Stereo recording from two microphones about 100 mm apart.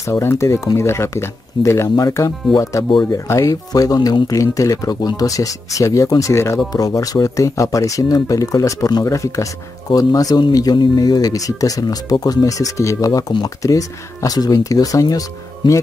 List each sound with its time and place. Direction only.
0.0 s speech: 30° left (ahead or behind)